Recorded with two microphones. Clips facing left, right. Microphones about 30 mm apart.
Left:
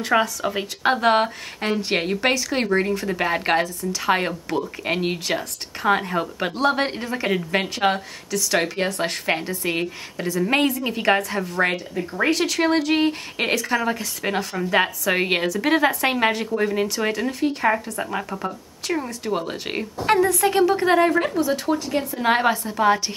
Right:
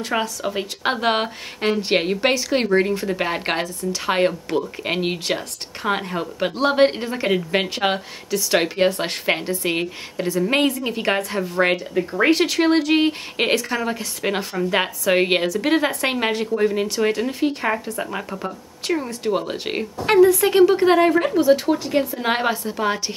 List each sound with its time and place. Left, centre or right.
0.0 s a woman's voice: centre
0.8 s a woman's voice: centre
6.6 s a woman's voice: centre
12.1 s a woman's voice: right
17.8 s a woman's voice: centre
19.2 s a woman's voice: centre
21.4 s a woman's voice: centre
22.1 s a woman's voice: centre